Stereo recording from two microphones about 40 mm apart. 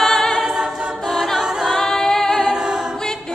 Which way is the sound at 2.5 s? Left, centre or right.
Centre.